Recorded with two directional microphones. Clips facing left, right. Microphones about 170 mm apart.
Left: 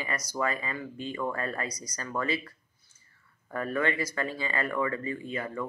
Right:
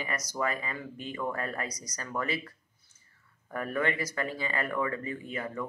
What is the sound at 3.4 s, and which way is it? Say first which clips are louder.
Speech: left 1 dB; 15° right (ahead or behind).